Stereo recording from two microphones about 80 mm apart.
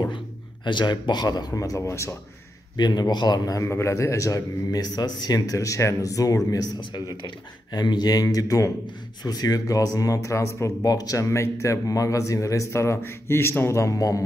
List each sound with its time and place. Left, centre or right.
0.7 s speech: left
2.8 s speech: left
3.6 s speech: left
6.8 s speech: left